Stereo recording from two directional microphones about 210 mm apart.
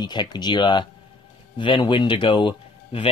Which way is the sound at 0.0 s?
20° left (ahead or behind).